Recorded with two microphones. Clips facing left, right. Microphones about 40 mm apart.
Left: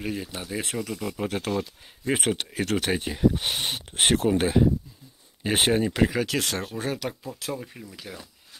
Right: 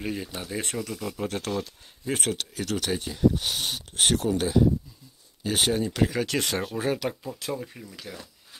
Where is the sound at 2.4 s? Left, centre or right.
Left.